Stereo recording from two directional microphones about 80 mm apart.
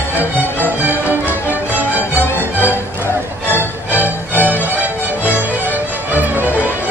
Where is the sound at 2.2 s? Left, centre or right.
Left.